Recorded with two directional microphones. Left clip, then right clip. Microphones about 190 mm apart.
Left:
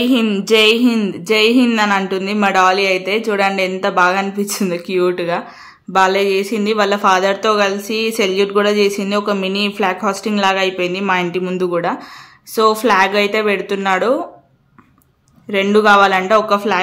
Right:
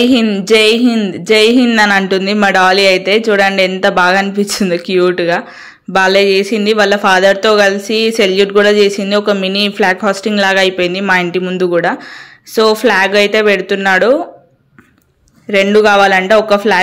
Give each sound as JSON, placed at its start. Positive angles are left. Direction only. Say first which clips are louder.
{"t": 0.0, "sound": "speech", "louder": "right 5 dB", "side_deg": -15}
{"t": 15.5, "sound": "speech", "louder": "right 3 dB", "side_deg": -15}